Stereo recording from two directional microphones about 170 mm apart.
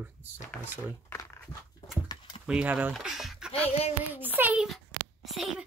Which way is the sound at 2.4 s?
10° right (ahead or behind).